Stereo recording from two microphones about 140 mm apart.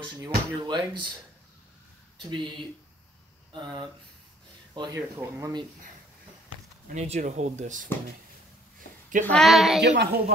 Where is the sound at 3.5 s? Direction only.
35° right (ahead or behind).